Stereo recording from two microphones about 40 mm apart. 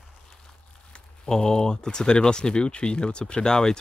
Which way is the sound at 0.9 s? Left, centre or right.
Left.